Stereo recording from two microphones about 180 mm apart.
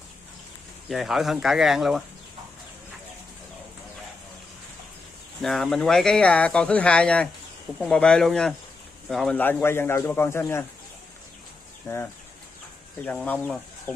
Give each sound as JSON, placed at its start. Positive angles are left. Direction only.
{"t": 0.8, "sound": "speech", "side_deg": 0}
{"t": 5.4, "sound": "speech", "side_deg": 0}
{"t": 11.9, "sound": "speech", "side_deg": 20}
{"t": 13.0, "sound": "speech", "side_deg": 10}